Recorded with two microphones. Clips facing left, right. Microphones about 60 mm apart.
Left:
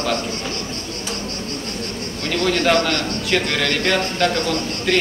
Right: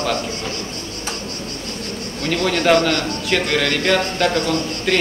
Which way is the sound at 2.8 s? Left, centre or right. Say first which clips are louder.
Right 2 dB; centre.